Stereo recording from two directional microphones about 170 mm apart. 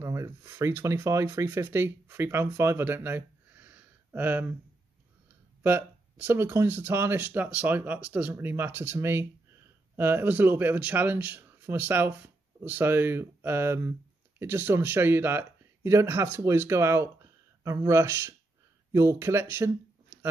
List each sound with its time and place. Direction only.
0.0 s speech: 15° right (ahead or behind)
5.6 s speech: 15° right (ahead or behind)